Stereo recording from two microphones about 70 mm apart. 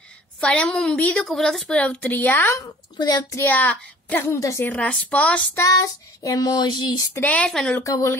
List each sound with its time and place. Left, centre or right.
0.4 s a woman's voice: centre
1.8 s a woman's voice: left
3.0 s child singing: left
3.3 s a woman's voice: left
4.4 s speech: left
4.6 s a woman's voice: centre
5.6 s child singing: left
7.2 s a woman's voice: left
7.4 s a woman's voice: centre
7.8 s speech: left